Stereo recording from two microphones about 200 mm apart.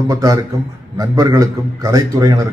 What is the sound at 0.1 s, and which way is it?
A man's voice, 15° right (ahead or behind).